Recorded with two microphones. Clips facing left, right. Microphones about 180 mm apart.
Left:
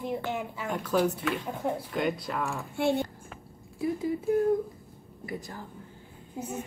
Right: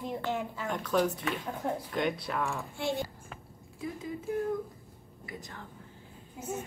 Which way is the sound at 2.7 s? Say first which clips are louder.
Left 9 dB; 60° left (ahead or behind).